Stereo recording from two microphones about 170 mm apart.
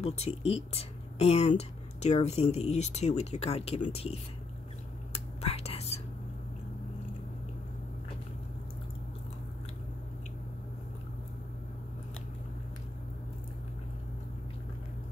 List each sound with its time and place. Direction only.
0.0 s speech: 40° left (ahead or behind)
5.1 s whispering: 40° left (ahead or behind)